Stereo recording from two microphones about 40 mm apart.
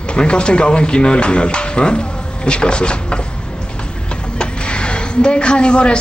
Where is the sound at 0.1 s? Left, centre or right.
Left.